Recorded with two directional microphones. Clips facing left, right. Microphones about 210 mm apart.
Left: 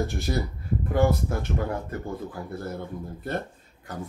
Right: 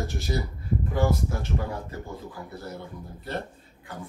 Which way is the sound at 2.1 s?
50° left (ahead or behind).